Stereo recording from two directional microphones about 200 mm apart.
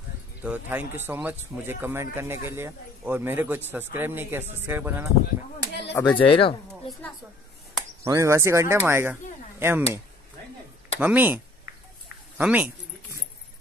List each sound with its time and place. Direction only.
0.4 s speech: 10° right (ahead or behind)
5.6 s a sound: 60° left (ahead or behind)
5.9 s speech: 25° left (ahead or behind)
8.0 s speech: 15° right (ahead or behind)
11.0 s speech: 10° right (ahead or behind)